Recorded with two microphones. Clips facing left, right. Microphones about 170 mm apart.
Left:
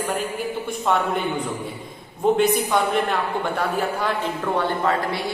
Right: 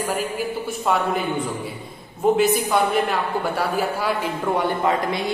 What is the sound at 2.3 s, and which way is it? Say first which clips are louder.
A woman's voice: right 1 dB; 5° right (ahead or behind).